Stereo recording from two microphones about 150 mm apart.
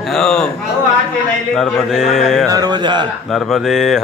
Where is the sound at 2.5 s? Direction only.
25° right (ahead or behind).